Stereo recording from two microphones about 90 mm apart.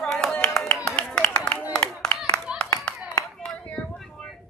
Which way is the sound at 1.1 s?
10° left (ahead or behind).